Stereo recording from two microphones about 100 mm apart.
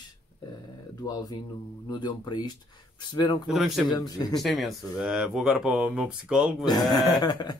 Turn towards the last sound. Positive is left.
turn(degrees=45)  # may be behind; listen again after turning